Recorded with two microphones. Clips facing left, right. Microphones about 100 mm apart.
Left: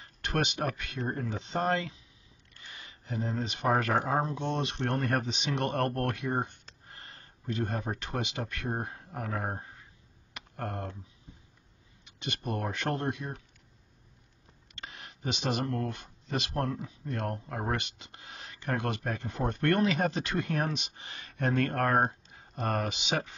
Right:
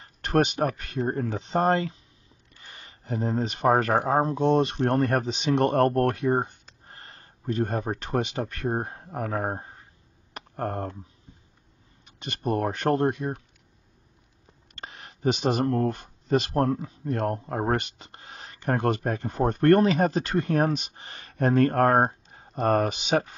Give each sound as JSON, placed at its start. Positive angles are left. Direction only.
{"t": 0.0, "sound": "speech", "side_deg": -40}
{"t": 10.3, "sound": "a sound", "side_deg": -40}
{"t": 12.0, "sound": "speech", "side_deg": -40}
{"t": 14.7, "sound": "speech", "side_deg": -40}